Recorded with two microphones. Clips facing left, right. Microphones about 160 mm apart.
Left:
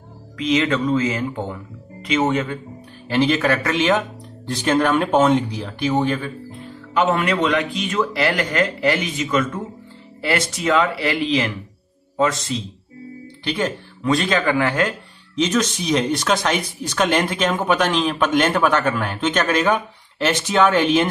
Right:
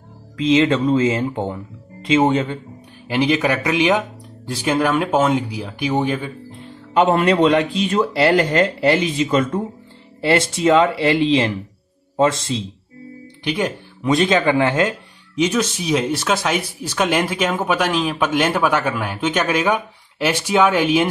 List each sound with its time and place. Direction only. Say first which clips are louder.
0.4 s speech: right 4 dB; 25° right (ahead or behind)
3.1 s speech: even; 15° right (ahead or behind)
7.0 s speech: right 4 dB; 35° right (ahead or behind)
13.4 s speech: right 1 dB; 15° right (ahead or behind)
15.3 s speech: right 1 dB; 10° right (ahead or behind)